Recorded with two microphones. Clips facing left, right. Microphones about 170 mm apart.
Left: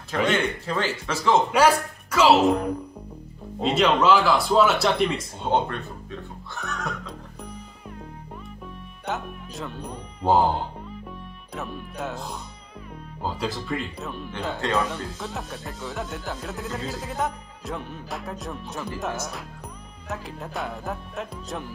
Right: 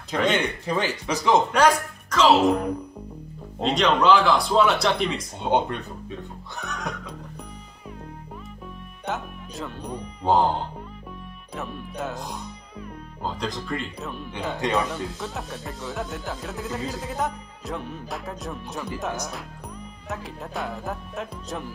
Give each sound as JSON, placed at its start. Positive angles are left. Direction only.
{"t": 0.1, "sound": "speech", "side_deg": -15}
{"t": 1.5, "sound": "speech", "side_deg": 5}
{"t": 5.4, "sound": "speech", "side_deg": -15}
{"t": 9.0, "sound": "speech", "side_deg": 0}
{"t": 13.2, "sound": "speech", "side_deg": 5}